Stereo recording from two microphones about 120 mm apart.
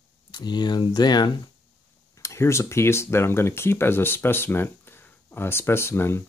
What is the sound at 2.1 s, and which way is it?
Speech, 25° left (ahead or behind).